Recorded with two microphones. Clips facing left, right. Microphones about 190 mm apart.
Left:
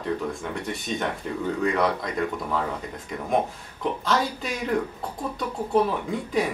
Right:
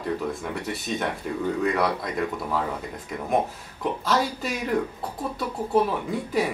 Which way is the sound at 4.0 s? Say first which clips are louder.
Right 1 dB; 5° right (ahead or behind).